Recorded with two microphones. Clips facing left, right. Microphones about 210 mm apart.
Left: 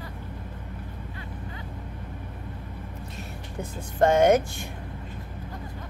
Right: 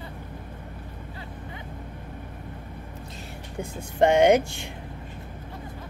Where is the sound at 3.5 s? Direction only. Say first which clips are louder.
Right 1 dB; 10° right (ahead or behind).